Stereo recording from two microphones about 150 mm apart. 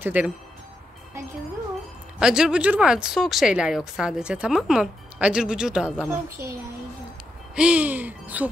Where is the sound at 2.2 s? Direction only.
5° right (ahead or behind).